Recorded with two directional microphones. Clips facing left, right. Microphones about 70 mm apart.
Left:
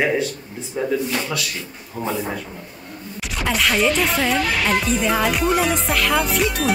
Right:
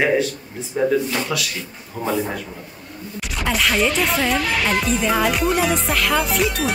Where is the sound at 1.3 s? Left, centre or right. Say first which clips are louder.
Right 1 dB; centre.